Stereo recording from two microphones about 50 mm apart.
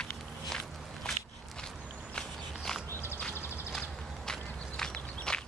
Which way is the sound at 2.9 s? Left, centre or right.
Left.